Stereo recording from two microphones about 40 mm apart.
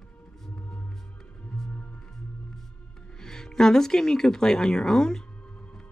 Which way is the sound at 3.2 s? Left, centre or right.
Centre.